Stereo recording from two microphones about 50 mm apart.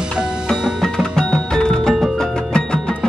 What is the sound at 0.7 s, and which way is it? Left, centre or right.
Music, centre.